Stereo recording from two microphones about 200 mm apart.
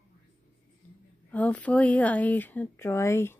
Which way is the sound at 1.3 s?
5° left (ahead or behind).